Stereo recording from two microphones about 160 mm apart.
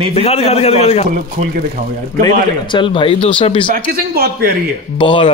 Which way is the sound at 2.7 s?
30° left (ahead or behind).